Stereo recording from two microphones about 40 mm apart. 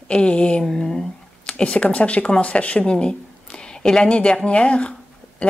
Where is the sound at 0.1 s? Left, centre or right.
Left.